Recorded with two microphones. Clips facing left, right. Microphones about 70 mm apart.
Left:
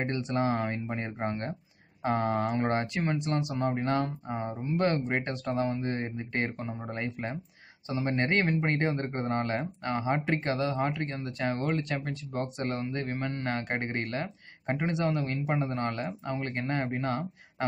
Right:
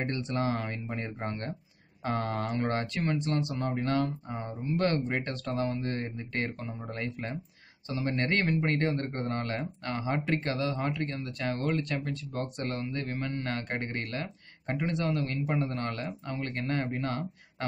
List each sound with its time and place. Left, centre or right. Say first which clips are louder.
0.0 s a man's voice: left 2 dB; centre